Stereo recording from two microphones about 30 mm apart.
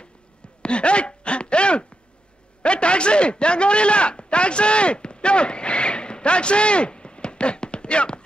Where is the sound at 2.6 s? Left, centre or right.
Left.